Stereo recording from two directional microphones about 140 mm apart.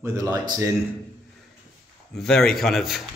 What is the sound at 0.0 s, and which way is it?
Speech, 20° right (ahead or behind).